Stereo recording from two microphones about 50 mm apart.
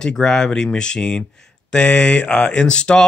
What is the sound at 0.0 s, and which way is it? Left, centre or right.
Speech, centre.